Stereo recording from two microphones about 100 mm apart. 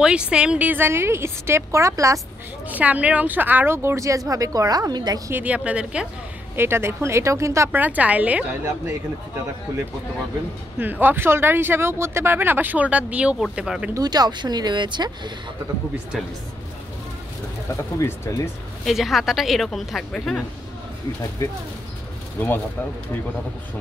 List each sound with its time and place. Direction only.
0.0 s speech: 10° right (ahead or behind); by 2.1 s 30° right (ahead or behind)
2.7 s a woman's voice: 15° right (ahead or behind); by 5.2 s 40° right (ahead or behind)
5.3 s speech: 15° right (ahead or behind)
6.5 s speech: 25° right (ahead or behind)
7.8 s speech: 15° right (ahead or behind)
10.8 s speech: 20° right (ahead or behind)
13.9 s speech: 40° right (ahead or behind)
17.9 s speech: 30° left (ahead or behind)
18.9 s a woman's voice: centre (ahead or behind)
21.4 s speech: 30° left (ahead or behind)